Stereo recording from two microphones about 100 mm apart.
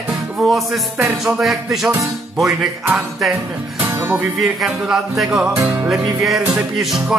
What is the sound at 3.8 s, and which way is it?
Music, 25° right (ahead or behind).